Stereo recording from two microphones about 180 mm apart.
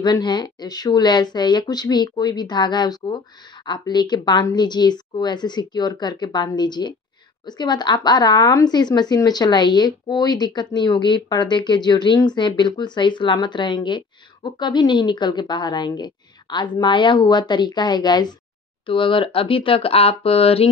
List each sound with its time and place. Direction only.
0.0 s speech: 25° left (ahead or behind)